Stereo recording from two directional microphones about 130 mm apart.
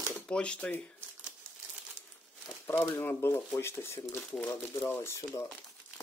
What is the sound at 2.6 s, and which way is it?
Speech, 20° left (ahead or behind).